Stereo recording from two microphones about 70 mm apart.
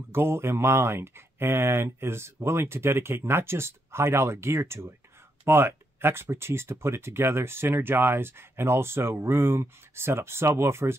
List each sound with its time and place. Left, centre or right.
0.1 s speech: right